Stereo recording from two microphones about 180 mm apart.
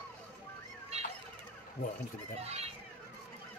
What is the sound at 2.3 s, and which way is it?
Speech, 35° right (ahead or behind).